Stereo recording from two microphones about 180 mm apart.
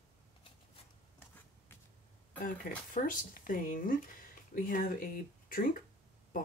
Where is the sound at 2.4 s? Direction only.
50° left (ahead or behind).